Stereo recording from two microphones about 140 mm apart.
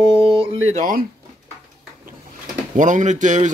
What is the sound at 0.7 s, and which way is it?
Speech, 65° right (ahead or behind).